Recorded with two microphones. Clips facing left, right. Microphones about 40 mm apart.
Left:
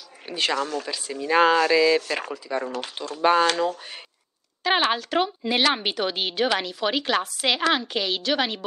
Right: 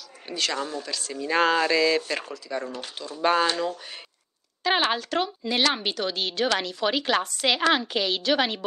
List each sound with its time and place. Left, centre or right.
0.3 s speech: left
0.6 s speech: left
0.8 s a woman's voice: centre
2.3 s a woman's voice: centre